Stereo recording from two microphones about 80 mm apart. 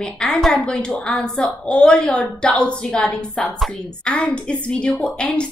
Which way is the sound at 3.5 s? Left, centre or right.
Centre.